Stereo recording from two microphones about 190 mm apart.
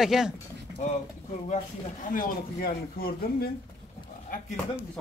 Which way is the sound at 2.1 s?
50° left (ahead or behind).